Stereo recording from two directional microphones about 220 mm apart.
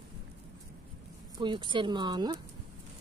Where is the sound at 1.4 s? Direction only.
20° right (ahead or behind).